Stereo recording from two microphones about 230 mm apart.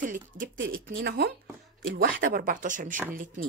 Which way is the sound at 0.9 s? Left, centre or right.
Right.